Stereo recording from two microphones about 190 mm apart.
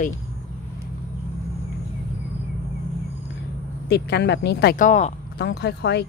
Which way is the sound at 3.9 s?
60° left (ahead or behind).